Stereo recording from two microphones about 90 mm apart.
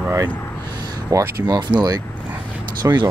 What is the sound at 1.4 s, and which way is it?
Speech, 55° right (ahead or behind).